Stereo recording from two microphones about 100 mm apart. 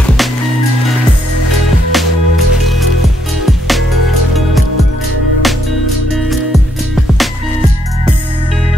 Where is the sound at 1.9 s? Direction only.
Centre (ahead or behind).